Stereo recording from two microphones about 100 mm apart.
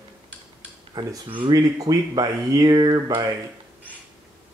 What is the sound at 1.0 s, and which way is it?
Speech, 50° right (ahead or behind).